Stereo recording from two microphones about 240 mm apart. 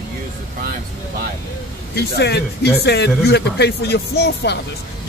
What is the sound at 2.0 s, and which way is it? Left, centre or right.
Speech, left.